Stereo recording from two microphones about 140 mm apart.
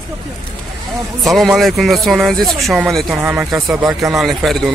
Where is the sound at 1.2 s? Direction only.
Centre (ahead or behind).